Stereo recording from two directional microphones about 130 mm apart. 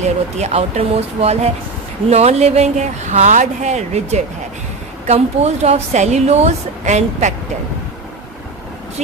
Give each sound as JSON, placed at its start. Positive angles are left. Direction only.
{"t": 0.4, "sound": "a woman's voice", "side_deg": -55}